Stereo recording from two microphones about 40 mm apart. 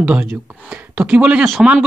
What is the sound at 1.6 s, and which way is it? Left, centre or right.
Speech, centre.